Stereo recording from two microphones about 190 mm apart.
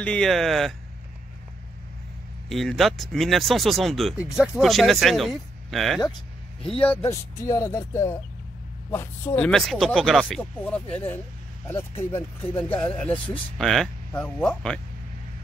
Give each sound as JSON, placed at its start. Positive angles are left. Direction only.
{"t": 0.0, "sound": "speech", "side_deg": 5}
{"t": 2.5, "sound": "speech", "side_deg": 0}
{"t": 6.8, "sound": "speech", "side_deg": 10}